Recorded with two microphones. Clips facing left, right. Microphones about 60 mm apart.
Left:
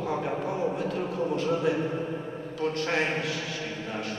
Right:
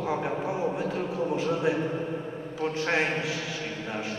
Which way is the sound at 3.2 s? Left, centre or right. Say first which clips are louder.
Even; centre.